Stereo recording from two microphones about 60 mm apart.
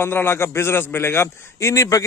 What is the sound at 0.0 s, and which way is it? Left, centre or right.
A man's voice, left.